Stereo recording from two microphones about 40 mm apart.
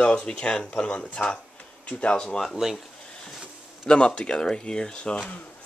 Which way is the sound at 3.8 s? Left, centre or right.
Left.